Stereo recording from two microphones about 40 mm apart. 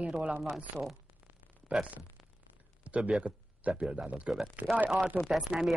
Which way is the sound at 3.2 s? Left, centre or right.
Right.